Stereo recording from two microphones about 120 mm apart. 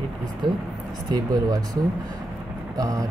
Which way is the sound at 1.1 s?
30° right (ahead or behind).